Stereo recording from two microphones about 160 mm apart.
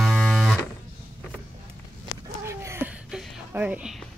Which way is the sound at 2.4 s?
15° right (ahead or behind).